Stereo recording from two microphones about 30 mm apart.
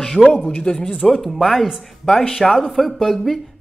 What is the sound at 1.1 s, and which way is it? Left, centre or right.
Speech, centre.